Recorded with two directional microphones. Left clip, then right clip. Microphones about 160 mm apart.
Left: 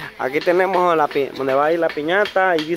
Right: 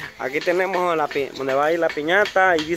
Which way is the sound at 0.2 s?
20° left (ahead or behind).